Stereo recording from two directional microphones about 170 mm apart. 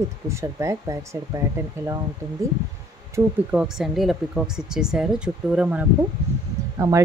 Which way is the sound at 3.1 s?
5° right (ahead or behind).